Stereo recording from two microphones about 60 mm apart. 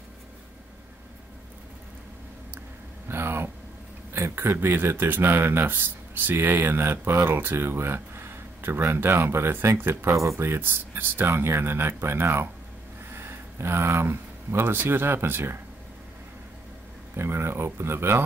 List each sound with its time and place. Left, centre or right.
3.1 s a sound: right
4.1 s speech: right
10.1 s speech: right
17.1 s speech: right